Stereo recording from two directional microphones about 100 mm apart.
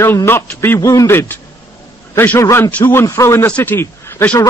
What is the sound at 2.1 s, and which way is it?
A man's voice, 15° left (ahead or behind).